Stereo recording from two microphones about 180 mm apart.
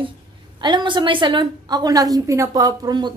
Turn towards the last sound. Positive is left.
turn(degrees=-25)  # may be behind; listen again after turning